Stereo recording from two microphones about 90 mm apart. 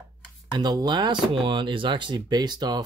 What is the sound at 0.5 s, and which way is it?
Speech, 50° right (ahead or behind).